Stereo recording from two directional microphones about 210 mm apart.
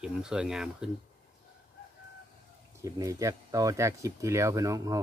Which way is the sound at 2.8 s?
15° right (ahead or behind).